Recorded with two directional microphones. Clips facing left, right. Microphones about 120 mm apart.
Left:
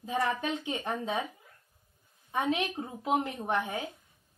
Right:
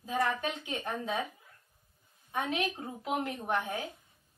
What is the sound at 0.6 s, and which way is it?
Speech, 20° left (ahead or behind).